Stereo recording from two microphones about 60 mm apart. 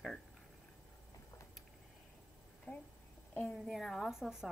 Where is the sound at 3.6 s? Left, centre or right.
Centre.